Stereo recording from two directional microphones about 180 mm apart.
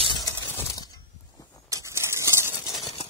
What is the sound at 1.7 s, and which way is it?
Bird, 15° right (ahead or behind).